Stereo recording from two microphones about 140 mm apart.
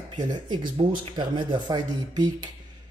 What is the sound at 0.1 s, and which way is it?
Speech, 30° right (ahead or behind).